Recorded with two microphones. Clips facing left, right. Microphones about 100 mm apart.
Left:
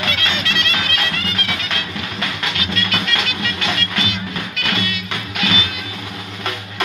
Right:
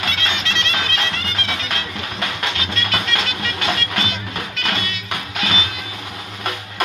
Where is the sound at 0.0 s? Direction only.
20° right (ahead or behind).